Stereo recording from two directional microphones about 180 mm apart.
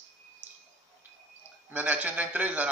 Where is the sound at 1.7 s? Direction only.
10° right (ahead or behind).